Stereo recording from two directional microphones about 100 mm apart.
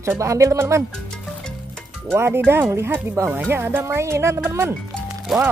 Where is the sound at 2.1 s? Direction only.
25° right (ahead or behind).